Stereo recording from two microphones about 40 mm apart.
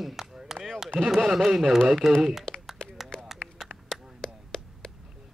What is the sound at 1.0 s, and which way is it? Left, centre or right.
Speech, centre.